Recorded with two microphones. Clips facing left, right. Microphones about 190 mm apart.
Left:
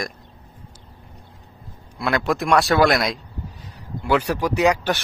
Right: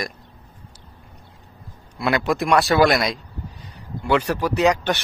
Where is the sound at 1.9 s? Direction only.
Centre (ahead or behind).